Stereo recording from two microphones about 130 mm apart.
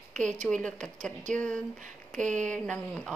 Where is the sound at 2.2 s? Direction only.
75° right (ahead or behind).